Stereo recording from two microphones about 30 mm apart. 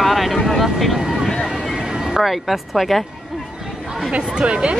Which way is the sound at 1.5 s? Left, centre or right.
Right.